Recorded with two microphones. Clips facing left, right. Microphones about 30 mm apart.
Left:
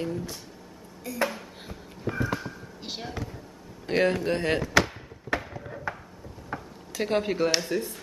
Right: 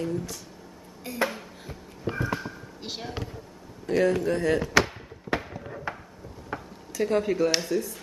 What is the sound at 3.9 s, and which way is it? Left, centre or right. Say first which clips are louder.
Speech: right 1 dB; left.